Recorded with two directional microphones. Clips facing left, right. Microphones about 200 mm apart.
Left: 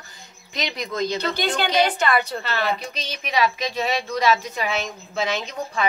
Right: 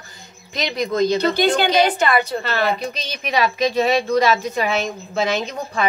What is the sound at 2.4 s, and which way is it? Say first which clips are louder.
A woman's voice: right 4 dB; 45° right (ahead or behind).